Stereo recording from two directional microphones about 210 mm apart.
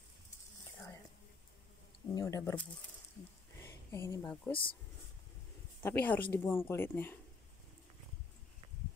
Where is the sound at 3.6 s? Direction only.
10° left (ahead or behind).